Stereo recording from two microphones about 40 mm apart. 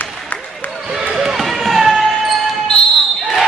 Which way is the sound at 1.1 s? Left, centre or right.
Centre.